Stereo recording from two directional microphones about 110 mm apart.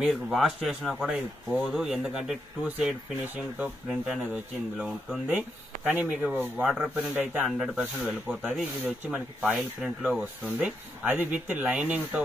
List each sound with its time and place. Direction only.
0.0 s speech: centre (ahead or behind)
7.0 s speech: 15° right (ahead or behind)
7.4 s speech: 5° right (ahead or behind)